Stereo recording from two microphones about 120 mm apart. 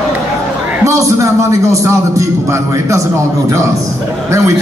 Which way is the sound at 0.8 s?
25° right (ahead or behind).